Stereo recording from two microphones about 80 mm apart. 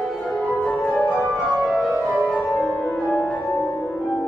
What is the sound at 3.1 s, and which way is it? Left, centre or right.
Music, left.